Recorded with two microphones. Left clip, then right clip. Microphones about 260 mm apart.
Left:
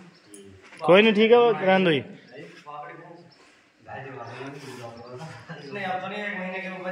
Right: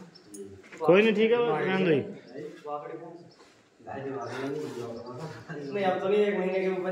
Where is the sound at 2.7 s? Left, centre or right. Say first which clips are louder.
Right 3 dB; right.